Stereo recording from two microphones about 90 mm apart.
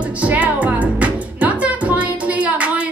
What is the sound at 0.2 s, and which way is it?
Music, 15° right (ahead or behind).